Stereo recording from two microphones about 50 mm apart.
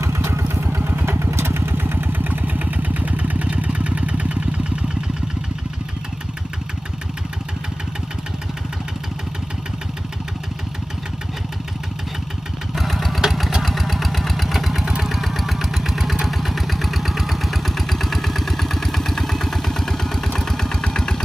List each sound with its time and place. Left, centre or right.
0.0 s vehicle: right
0.7 s motorcycle: right
1.0 s vehicle: right
12.7 s engine: centre